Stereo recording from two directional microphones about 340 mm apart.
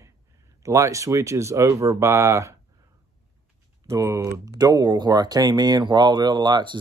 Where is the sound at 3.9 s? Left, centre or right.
Centre.